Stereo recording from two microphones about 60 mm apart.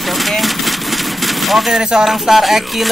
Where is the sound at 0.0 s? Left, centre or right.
Centre.